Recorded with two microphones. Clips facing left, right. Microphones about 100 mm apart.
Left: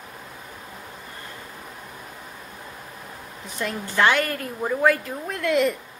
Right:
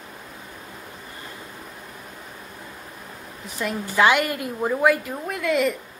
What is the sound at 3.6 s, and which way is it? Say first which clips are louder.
A woman's voice: right 2 dB; 5° right (ahead or behind).